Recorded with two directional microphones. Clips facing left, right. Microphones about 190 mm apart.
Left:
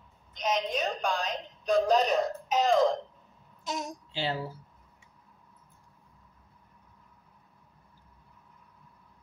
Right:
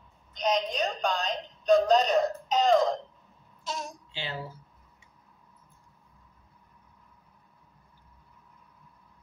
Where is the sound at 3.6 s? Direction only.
20° left (ahead or behind).